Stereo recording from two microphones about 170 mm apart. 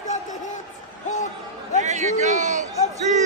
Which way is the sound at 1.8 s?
45° right (ahead or behind).